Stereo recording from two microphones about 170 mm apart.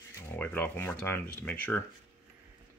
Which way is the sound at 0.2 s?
10° left (ahead or behind).